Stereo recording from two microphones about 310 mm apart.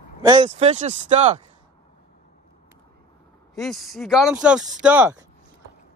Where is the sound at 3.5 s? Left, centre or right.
Centre.